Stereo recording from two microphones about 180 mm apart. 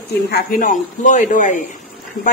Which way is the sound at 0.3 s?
55° left (ahead or behind).